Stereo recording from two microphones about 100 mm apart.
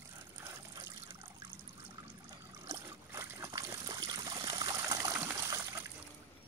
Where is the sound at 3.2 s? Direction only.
30° right (ahead or behind).